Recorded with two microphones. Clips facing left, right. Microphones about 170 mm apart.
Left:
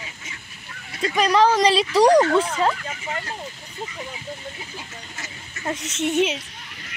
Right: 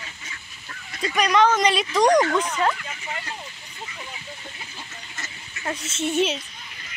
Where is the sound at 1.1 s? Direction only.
30° left (ahead or behind).